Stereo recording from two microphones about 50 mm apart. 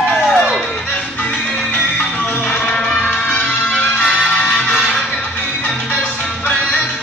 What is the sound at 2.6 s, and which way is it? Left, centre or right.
Music, centre.